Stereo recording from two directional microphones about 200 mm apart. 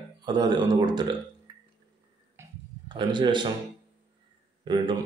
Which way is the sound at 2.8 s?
25° right (ahead or behind).